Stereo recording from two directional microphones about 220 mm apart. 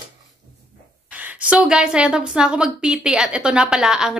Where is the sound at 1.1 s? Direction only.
5° right (ahead or behind).